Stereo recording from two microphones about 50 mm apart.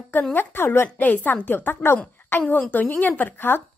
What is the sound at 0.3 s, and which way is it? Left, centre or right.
Speech, left.